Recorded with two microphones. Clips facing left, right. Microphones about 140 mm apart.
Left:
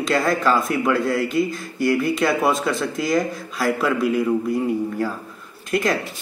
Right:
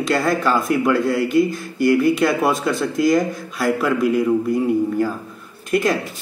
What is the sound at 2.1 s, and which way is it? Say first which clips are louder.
Speech: right 1 dB; centre (ahead or behind).